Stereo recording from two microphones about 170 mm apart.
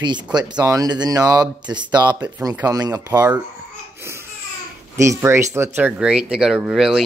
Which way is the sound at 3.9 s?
15° right (ahead or behind).